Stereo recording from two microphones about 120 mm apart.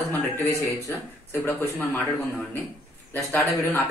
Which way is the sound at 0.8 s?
20° left (ahead or behind).